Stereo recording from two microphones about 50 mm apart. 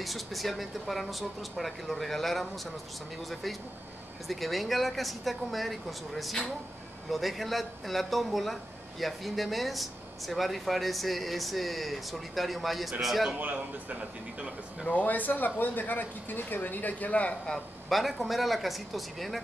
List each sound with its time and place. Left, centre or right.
0.0 s speech: centre
4.3 s speech: centre
13.4 s a man's voice: right
14.9 s speech: left
17.8 s speech: centre